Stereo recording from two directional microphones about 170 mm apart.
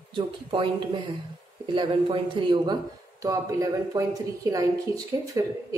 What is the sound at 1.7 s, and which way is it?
A woman's voice, 30° right (ahead or behind).